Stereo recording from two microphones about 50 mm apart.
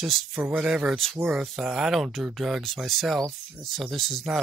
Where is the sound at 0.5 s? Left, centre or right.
Centre.